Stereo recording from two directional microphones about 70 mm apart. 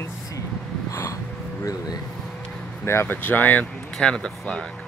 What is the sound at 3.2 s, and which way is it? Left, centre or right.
Speech, left.